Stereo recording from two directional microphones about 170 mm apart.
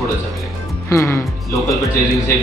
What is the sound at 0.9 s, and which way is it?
Speech, 15° left (ahead or behind).